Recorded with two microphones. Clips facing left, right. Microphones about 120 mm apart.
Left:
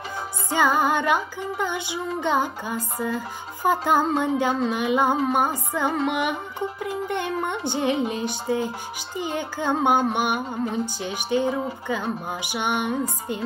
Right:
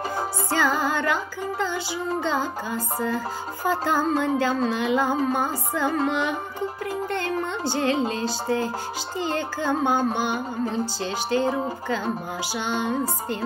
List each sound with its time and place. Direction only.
0.5 s music: 15° left (ahead or behind)
11.9 s speech: 20° left (ahead or behind)